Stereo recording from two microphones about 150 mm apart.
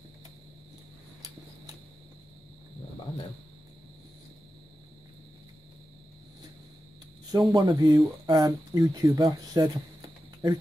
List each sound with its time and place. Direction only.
7.2 s speech: 25° right (ahead or behind)